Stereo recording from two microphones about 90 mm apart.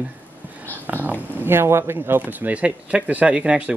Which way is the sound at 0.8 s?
20° right (ahead or behind).